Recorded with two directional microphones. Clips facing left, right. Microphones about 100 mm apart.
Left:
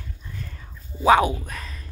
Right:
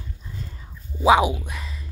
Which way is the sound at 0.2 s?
25° right (ahead or behind).